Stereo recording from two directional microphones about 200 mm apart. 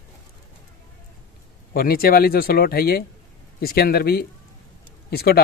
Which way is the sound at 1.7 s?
50° left (ahead or behind).